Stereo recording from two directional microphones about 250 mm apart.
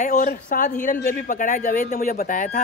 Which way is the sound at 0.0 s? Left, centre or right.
Left.